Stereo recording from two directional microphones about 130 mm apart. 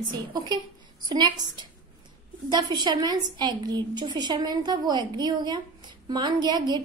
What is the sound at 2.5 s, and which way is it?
A woman's voice, 35° right (ahead or behind).